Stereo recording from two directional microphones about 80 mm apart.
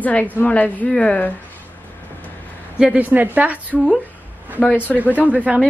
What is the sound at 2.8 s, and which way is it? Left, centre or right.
A woman's voice, centre.